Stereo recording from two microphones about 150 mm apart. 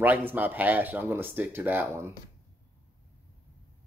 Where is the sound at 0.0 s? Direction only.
10° right (ahead or behind).